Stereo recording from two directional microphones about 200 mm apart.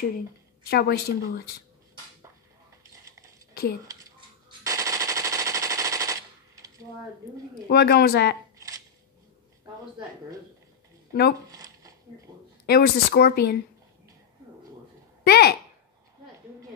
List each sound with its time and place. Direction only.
0.7 s speech: 50° left (ahead or behind)
2.8 s dishes: 15° right (ahead or behind)
3.8 s machine gun: 15° right (ahead or behind)
7.6 s speech: 50° left (ahead or behind)
8.5 s a sound: 15° right (ahead or behind)
11.5 s a sound: 15° right (ahead or behind)
12.6 s speech: 50° left (ahead or behind)
15.2 s speech: 55° left (ahead or behind)